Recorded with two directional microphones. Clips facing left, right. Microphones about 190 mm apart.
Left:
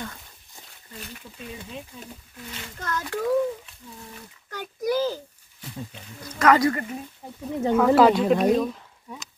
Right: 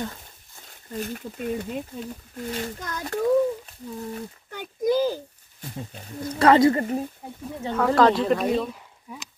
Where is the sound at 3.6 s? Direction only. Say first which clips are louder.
Right 10 dB; 40° right (ahead or behind).